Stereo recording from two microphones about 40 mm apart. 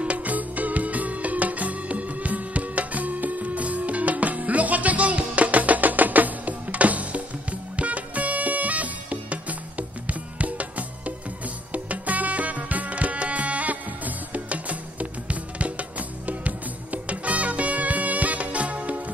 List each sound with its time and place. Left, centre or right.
0.0 s music: right